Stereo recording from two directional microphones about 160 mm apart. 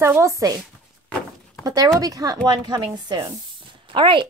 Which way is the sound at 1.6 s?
20° right (ahead or behind).